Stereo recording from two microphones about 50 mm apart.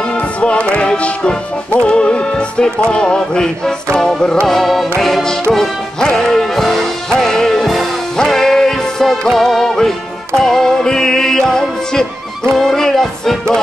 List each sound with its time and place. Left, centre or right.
0.4 s music: left; by 13.4 s centre